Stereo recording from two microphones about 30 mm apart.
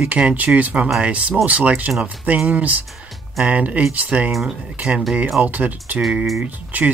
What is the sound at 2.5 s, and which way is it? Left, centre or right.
Speech, right.